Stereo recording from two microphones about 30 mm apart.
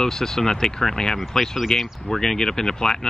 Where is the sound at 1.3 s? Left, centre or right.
Centre.